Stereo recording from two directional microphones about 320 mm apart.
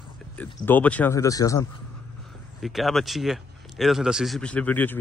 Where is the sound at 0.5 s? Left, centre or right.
Centre.